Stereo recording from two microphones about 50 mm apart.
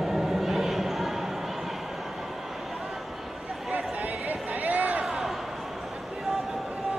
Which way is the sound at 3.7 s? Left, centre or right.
Right.